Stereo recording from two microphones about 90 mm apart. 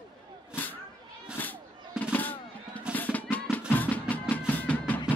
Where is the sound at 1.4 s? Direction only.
20° left (ahead or behind).